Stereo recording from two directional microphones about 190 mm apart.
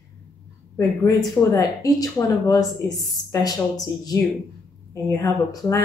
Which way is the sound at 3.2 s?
40° left (ahead or behind).